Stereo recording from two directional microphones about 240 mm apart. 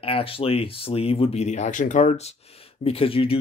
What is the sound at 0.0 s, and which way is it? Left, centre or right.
Speech, left.